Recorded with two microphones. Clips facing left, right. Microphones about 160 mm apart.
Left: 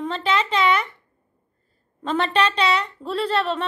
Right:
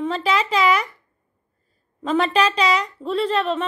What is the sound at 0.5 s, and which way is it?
Speech, 30° left (ahead or behind).